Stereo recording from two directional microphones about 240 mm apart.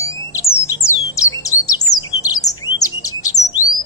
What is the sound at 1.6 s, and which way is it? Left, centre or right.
Chirp, centre.